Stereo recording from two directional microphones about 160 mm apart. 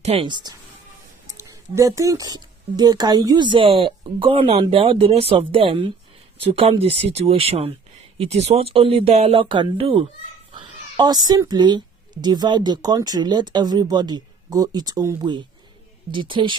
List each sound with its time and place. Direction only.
0.0 s speech: 35° right (ahead or behind)